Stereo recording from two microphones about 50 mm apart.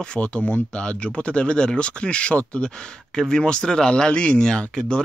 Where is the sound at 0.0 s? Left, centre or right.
Left.